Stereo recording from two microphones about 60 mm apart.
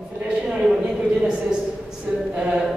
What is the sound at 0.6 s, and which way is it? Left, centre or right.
Speech, centre.